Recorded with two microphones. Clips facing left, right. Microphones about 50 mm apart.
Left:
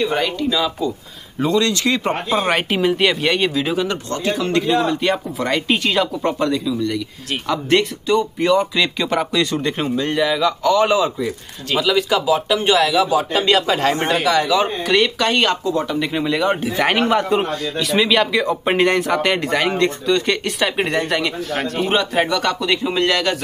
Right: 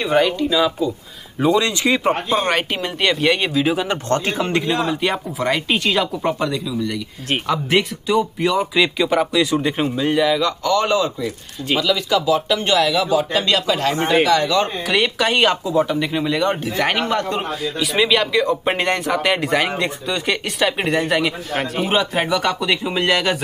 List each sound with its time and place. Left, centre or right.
0.0 s speech: centre
2.0 s speech: centre
4.4 s a man's voice: right
4.6 s speech: centre; by 14.1 s left
14.2 s speech: centre
15.0 s speech: centre
17.7 s speech: centre